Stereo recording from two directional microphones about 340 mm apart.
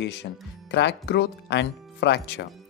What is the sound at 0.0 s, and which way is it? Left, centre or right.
Speech, left.